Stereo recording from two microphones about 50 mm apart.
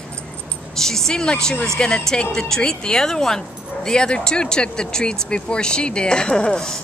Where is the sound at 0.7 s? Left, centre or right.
Centre.